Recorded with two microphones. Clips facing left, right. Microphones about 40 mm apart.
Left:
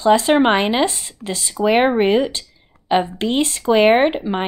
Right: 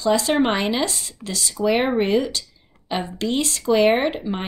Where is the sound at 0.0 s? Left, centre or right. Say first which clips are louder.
Left 5 dB; left.